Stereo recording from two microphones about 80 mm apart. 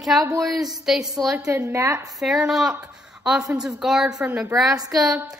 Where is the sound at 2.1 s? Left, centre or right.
Centre.